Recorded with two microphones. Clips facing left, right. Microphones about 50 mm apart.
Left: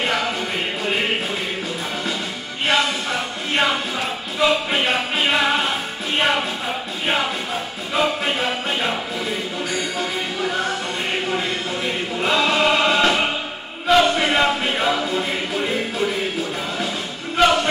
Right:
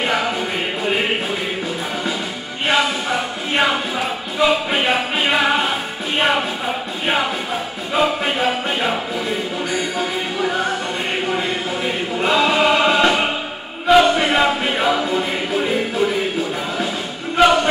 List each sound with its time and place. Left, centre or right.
0.0 s music: centre
2.7 s music: centre
7.9 s music: centre
11.2 s choir: centre
13.8 s music: centre
17.4 s music: centre